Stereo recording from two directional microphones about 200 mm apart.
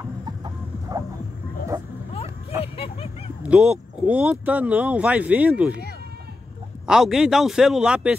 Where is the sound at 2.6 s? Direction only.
30° left (ahead or behind).